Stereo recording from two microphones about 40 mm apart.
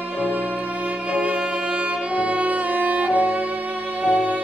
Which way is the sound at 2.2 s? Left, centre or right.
Right.